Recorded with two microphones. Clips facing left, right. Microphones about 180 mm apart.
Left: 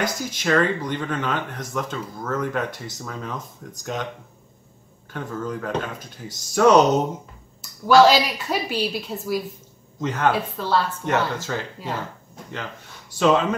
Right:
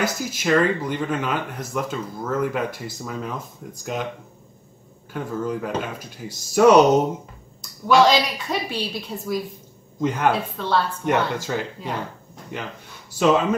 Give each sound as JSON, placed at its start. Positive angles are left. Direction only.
{"t": 0.0, "sound": "speech", "side_deg": -10}
{"t": 5.1, "sound": "speech", "side_deg": -10}
{"t": 7.8, "sound": "a woman's voice", "side_deg": 5}
{"t": 9.9, "sound": "speech", "side_deg": -15}
{"t": 10.6, "sound": "a woman's voice", "side_deg": 5}
{"t": 11.1, "sound": "speech", "side_deg": -10}
{"t": 13.2, "sound": "speech", "side_deg": -5}